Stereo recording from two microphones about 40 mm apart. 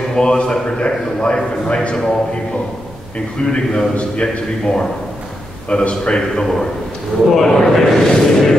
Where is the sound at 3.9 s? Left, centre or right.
Left.